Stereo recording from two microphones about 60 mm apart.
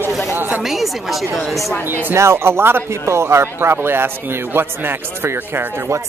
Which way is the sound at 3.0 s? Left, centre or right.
Right.